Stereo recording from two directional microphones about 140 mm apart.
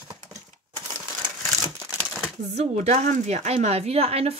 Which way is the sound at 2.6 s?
55° right (ahead or behind).